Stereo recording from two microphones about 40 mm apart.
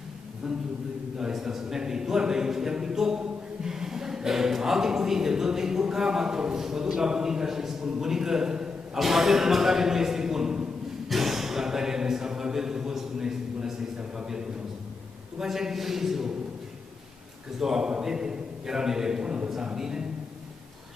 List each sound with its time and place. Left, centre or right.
0.4 s a man's voice: centre
1.3 s a sound: centre
8.9 s a man's voice: centre
11.1 s a sound: centre
15.3 s a man's voice: centre
17.6 s a man's voice: centre